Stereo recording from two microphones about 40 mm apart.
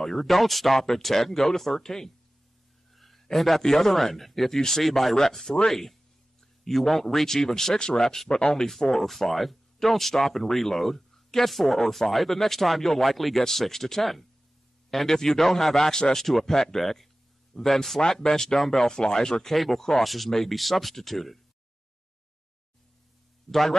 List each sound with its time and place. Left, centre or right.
0.0 s speech: centre
2.9 s a sound: centre
3.3 s speech: centre
8.9 s speech: centre
19.5 s speech: centre
23.5 s a man's voice: centre